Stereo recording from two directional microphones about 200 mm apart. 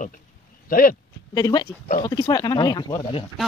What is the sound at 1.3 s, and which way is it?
Speech, 20° left (ahead or behind).